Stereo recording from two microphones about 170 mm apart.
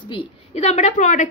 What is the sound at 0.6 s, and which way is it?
Speech, 45° left (ahead or behind).